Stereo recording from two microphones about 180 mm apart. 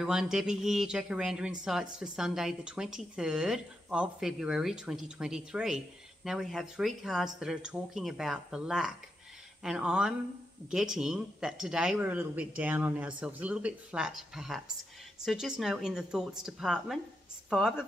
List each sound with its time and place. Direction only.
0.0 s a woman's voice: 5° right (ahead or behind)